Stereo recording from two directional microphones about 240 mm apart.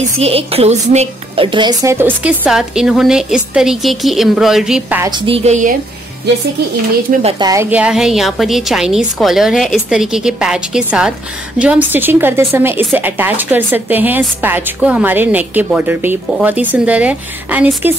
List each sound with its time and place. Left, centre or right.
0.2 s a woman's voice: right; by 5.1 s centre
5.2 s a woman's voice: right
7.1 s a woman's voice: right; by 17.9 s centre